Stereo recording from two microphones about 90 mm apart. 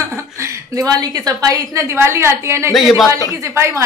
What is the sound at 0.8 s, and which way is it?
A woman's voice, 45° right (ahead or behind).